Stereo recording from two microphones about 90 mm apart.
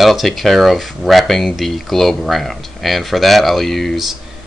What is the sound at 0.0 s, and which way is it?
Speech, centre (ahead or behind).